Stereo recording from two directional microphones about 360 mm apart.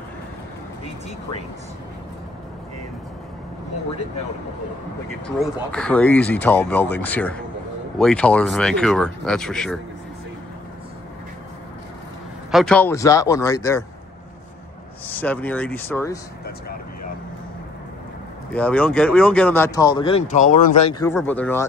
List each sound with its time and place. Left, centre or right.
5.2 s speech: centre
12.4 s speech: centre
15.0 s speech: centre
16.4 s vehicle: left
18.5 s speech: centre
21.0 s speech: centre